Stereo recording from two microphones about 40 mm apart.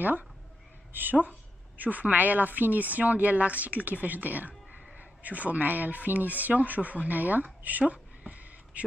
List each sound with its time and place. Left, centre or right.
0.0 s a woman's voice: right
1.8 s speech: right
7.8 s a sound: right